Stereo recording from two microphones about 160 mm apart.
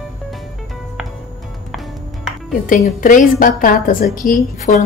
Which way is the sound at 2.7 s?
55° left (ahead or behind).